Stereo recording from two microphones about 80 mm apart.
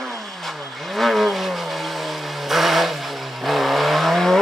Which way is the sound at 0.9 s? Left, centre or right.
Centre.